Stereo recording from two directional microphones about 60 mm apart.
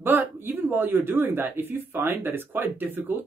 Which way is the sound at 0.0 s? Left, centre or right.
Right.